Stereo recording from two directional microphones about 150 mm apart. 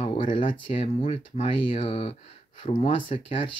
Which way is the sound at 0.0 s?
35° left (ahead or behind).